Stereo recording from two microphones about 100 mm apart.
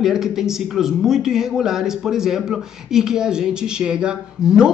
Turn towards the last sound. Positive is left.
turn(degrees=-10)  # may be behind; listen again after turning